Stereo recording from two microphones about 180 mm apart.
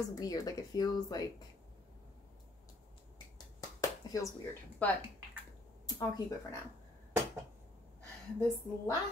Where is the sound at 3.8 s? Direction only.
20° left (ahead or behind).